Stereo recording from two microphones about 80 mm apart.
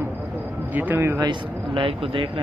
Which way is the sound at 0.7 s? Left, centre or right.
Right.